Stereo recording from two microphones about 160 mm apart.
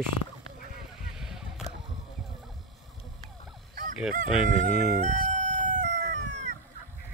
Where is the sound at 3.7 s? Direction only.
60° right (ahead or behind).